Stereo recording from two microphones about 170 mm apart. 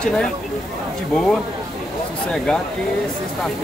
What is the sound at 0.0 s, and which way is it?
Speech, 5° left (ahead or behind).